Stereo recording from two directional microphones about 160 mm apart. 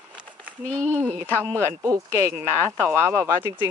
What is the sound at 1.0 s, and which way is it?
Speech, 15° right (ahead or behind).